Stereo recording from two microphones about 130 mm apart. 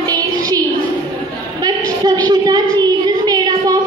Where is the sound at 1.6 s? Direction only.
35° right (ahead or behind).